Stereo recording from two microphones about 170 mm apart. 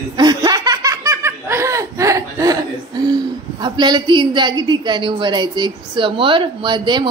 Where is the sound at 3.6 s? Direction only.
25° right (ahead or behind).